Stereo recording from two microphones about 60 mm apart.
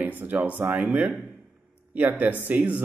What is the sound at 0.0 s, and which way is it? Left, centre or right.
Speech, right.